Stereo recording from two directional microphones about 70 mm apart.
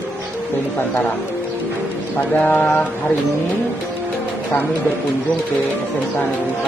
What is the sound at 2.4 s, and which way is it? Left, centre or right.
Speech, left.